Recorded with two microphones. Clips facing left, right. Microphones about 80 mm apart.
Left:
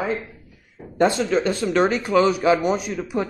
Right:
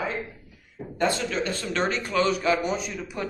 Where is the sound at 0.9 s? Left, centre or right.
Left.